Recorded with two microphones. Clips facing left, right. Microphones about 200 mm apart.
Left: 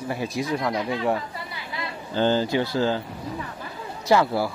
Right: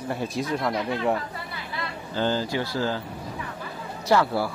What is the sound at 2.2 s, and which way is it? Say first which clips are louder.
Speech: left 4 dB; 25° left (ahead or behind).